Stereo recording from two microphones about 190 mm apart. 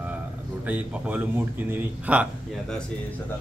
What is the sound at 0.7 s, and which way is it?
Speech, 10° right (ahead or behind).